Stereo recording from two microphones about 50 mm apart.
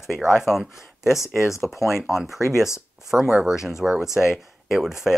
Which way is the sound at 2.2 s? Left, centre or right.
Centre.